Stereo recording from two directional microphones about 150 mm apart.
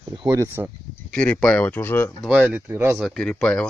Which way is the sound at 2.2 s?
5° right (ahead or behind).